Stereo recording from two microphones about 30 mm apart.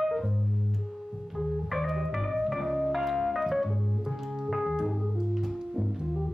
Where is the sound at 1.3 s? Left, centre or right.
Centre.